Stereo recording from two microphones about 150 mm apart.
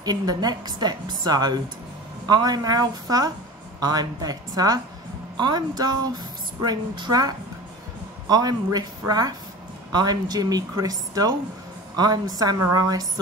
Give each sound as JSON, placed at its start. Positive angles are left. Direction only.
{"t": 0.0, "sound": "a woman's voice", "side_deg": -25}